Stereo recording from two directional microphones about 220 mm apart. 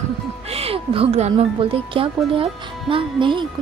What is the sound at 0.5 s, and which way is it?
Speech, 25° right (ahead or behind).